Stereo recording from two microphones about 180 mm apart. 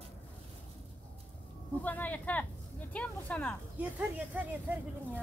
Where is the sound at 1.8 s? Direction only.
10° left (ahead or behind).